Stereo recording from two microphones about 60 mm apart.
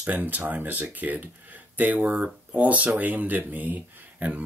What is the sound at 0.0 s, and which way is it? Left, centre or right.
Speech, right.